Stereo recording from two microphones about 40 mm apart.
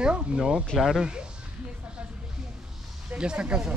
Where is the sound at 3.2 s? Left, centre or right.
Right.